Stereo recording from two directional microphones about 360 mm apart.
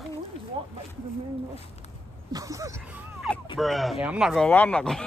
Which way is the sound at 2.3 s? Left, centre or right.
Centre.